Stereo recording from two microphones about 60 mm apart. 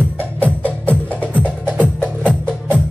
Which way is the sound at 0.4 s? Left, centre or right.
Left.